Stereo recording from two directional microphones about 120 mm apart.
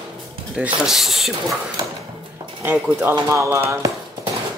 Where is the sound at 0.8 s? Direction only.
5° right (ahead or behind).